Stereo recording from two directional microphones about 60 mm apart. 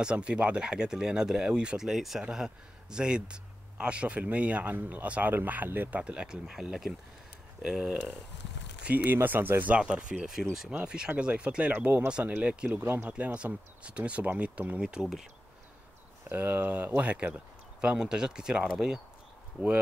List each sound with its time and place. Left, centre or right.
0.0 s speech: centre
9.0 s speech: right
9.8 s speech: centre
12.8 s speech: right
13.1 s speech: right
14.8 s speech: centre
16.3 s speech: right; by 18.9 s centre
19.6 s speech: right